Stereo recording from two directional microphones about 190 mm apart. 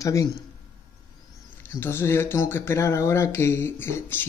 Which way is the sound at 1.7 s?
10° left (ahead or behind).